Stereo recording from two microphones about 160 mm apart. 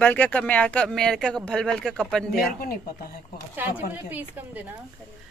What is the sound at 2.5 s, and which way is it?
Speech, 70° left (ahead or behind).